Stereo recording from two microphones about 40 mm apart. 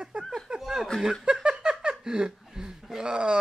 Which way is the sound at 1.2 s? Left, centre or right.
Right.